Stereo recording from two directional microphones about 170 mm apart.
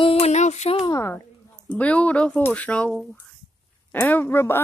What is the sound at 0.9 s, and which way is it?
A woman's voice, 15° left (ahead or behind).